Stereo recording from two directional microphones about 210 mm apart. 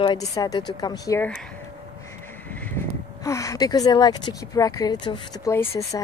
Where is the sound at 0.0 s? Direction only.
20° left (ahead or behind).